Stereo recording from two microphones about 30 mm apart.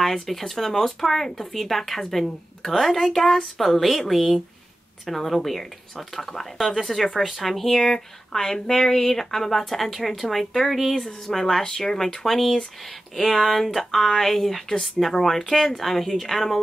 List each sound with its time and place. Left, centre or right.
0.0 s speech: centre
8.4 s speech: centre
13.4 s speech: centre
14.0 s speech: centre